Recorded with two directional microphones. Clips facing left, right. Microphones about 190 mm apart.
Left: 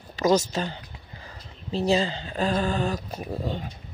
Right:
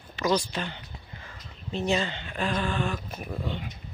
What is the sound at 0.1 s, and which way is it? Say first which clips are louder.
A woman's voice: left 5 dB; 45° left (ahead or behind).